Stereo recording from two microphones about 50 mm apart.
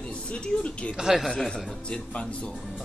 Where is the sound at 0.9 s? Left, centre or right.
Centre.